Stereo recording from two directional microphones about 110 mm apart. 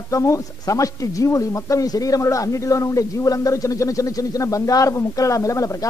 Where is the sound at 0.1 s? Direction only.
30° left (ahead or behind).